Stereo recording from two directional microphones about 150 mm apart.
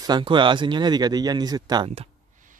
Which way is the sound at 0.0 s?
30° right (ahead or behind).